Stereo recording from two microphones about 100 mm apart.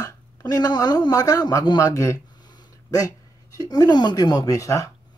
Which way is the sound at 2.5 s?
40° left (ahead or behind).